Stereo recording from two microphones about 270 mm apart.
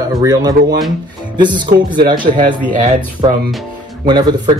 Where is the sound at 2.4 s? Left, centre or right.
Right.